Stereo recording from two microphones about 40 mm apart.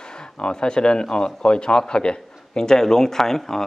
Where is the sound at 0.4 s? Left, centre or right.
Left.